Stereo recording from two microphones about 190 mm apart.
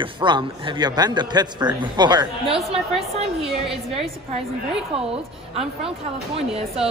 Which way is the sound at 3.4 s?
Centre (ahead or behind).